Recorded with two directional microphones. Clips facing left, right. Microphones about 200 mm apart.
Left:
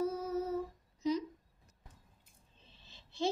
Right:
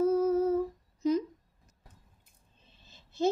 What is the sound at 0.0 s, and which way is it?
Humming, 50° right (ahead or behind).